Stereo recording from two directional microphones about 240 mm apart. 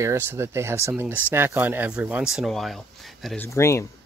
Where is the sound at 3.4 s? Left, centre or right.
Centre.